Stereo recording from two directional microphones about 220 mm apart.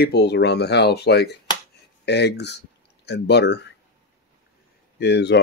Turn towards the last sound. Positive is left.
turn(degrees=50)  # may be behind; listen again after turning